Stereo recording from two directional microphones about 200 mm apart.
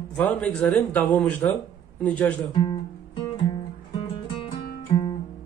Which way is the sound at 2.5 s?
20° left (ahead or behind).